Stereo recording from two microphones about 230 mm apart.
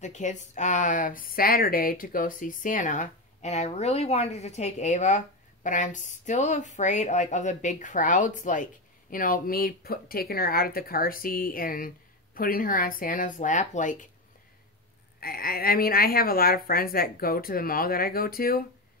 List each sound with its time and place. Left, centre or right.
0.0 s a woman's voice: left
15.1 s a woman's voice: left